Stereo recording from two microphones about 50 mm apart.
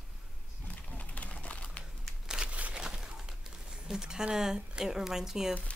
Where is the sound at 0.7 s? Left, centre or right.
Left.